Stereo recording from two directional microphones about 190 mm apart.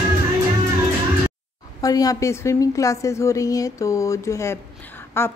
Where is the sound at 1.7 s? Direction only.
20° left (ahead or behind).